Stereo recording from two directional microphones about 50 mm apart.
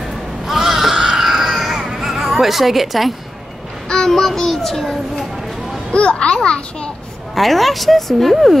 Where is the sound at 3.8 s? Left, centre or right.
Centre.